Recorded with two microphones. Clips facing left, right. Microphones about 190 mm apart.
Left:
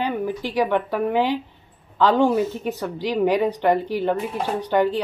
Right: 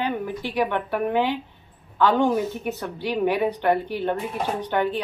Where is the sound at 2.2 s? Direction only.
15° right (ahead or behind).